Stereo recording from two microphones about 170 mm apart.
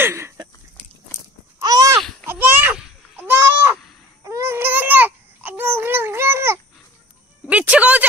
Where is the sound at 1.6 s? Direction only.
20° right (ahead or behind).